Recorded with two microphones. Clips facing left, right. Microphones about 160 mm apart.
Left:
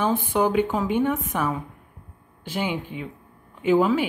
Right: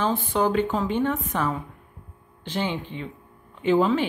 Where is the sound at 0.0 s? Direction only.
15° left (ahead or behind).